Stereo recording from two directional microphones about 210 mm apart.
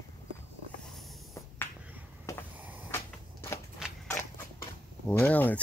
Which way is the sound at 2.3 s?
15° left (ahead or behind).